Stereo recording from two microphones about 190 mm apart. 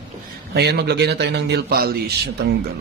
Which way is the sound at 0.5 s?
60° right (ahead or behind).